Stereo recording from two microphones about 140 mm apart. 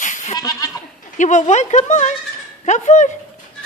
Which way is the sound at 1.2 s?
55° left (ahead or behind).